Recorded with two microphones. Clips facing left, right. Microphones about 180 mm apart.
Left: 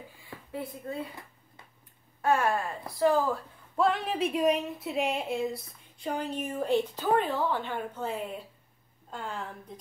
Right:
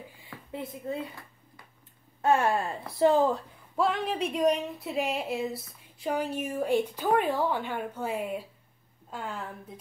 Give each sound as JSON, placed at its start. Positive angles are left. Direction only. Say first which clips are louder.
{"t": 0.5, "sound": "speech", "louder": "right 1 dB", "side_deg": -20}
{"t": 2.2, "sound": "speech", "louder": "right 2 dB", "side_deg": -25}
{"t": 3.7, "sound": "speech", "louder": "left 1 dB", "side_deg": 0}